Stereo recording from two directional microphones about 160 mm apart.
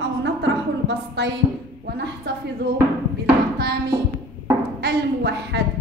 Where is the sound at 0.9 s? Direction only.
90° right.